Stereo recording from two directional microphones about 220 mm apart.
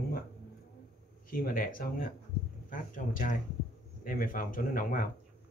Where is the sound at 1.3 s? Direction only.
40° left (ahead or behind).